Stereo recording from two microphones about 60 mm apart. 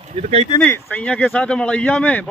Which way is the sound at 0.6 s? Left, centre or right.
Left.